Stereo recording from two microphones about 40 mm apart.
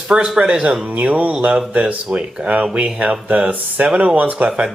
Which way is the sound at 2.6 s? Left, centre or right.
Right.